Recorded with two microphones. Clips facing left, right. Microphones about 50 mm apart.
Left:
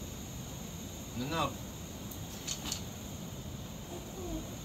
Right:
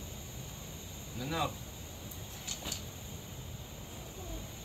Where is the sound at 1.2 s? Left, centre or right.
Centre.